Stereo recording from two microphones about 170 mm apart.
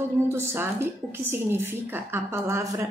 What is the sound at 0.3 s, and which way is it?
A woman's voice, 15° right (ahead or behind).